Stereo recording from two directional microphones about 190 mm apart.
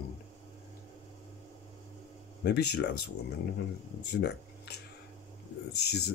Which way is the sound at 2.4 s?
60° left (ahead or behind).